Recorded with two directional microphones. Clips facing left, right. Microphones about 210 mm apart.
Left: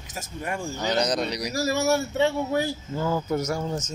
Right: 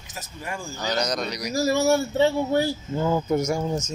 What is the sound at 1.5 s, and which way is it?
Speech, 30° right (ahead or behind).